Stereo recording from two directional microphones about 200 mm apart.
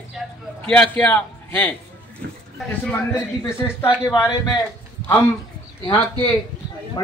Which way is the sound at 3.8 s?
20° left (ahead or behind).